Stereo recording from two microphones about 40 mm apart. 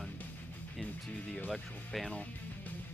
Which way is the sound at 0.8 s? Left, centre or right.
Left.